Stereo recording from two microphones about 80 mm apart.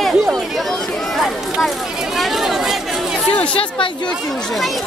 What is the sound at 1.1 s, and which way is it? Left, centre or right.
Chatter, centre.